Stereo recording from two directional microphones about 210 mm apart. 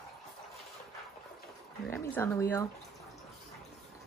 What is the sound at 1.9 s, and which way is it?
Speech, 10° left (ahead or behind).